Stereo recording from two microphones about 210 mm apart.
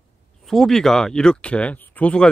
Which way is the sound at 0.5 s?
Centre (ahead or behind).